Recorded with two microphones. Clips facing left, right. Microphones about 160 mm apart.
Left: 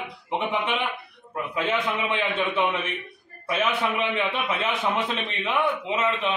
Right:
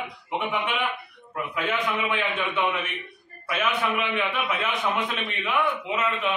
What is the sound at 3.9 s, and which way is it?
A man's voice, 25° left (ahead or behind).